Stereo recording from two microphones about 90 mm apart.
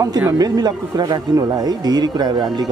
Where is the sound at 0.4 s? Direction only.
45° right (ahead or behind).